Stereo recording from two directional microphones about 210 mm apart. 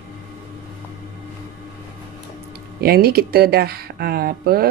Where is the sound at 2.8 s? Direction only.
45° right (ahead or behind).